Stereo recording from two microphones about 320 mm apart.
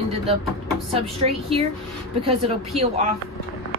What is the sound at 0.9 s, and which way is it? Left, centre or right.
Speech, centre.